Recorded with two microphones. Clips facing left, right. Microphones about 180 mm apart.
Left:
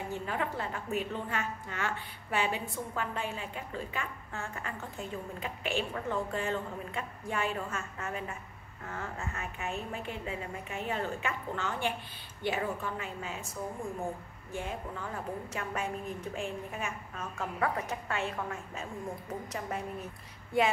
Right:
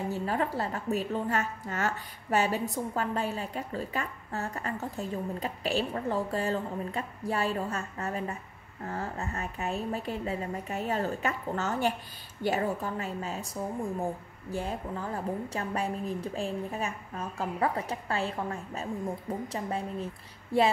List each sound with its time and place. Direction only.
0.1 s a woman's voice: 35° right (ahead or behind)
14.5 s a woman's voice: 35° right (ahead or behind)